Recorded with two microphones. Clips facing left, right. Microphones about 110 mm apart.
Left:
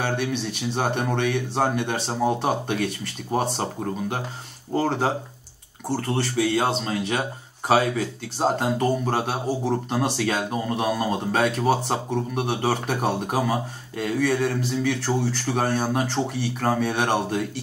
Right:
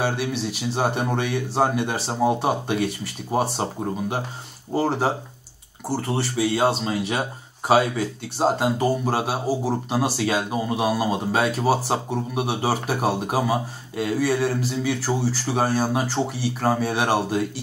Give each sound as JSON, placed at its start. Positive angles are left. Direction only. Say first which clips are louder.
{"t": 0.0, "sound": "speech", "louder": "right 1 dB", "side_deg": -5}